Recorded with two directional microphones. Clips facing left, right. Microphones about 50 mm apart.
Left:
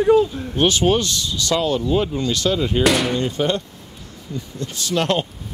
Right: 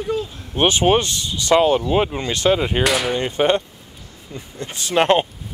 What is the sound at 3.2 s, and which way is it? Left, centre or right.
Speech, right.